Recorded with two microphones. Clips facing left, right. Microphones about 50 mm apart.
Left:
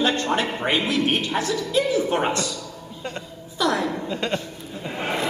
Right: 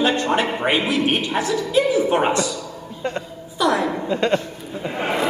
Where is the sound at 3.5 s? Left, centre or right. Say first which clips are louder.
Right 3 dB; centre.